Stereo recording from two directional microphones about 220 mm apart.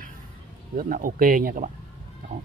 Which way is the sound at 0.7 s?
40° right (ahead or behind).